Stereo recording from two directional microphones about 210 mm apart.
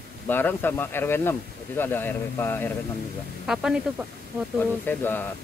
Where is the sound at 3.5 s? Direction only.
5° right (ahead or behind).